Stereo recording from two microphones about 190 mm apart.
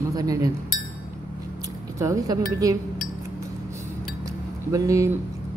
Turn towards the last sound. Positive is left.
turn(degrees=-15)  # may be behind; listen again after turning